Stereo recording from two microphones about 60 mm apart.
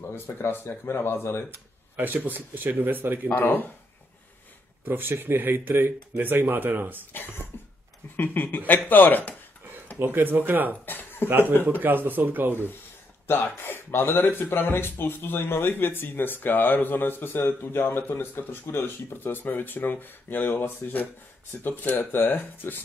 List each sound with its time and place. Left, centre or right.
0.0 s speech: left
2.0 s speech: right
3.3 s speech: left
4.8 s speech: right
7.5 s cough: left
8.2 s speech: left
9.9 s speech: right
10.9 s a sound: left
11.2 s speech: right
13.3 s speech: left